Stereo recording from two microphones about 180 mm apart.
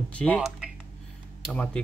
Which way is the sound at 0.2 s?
5° left (ahead or behind).